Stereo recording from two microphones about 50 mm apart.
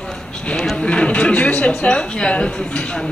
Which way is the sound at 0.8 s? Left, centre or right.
Left.